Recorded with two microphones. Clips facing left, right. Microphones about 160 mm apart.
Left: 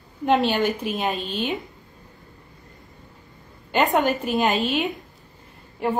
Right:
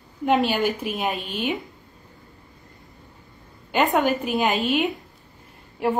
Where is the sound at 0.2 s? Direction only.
10° right (ahead or behind).